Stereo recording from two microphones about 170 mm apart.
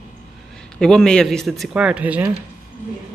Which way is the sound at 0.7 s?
5° left (ahead or behind).